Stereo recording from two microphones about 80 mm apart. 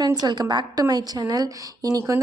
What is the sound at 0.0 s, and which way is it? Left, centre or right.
A woman's voice, right.